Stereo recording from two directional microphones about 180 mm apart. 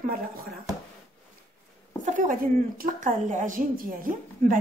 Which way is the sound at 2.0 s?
50° right (ahead or behind).